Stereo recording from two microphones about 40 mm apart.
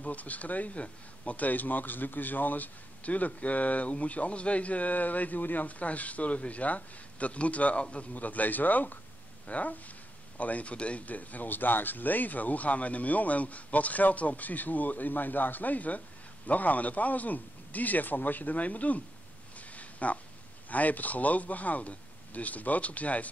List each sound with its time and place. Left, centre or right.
0.0 s speech: left
8.1 s speech: left
19.7 s a sound: left
20.7 s speech: left